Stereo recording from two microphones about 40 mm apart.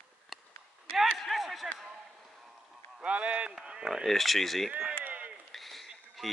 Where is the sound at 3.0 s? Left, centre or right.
Right.